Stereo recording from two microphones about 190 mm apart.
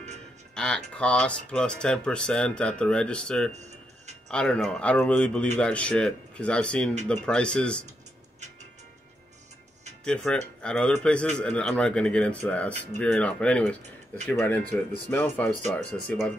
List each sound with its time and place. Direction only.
0.6 s speech: 5° left (ahead or behind)
3.5 s music: 35° right (ahead or behind)
4.3 s speech: 5° left (ahead or behind)
10.0 s speech: 5° left (ahead or behind)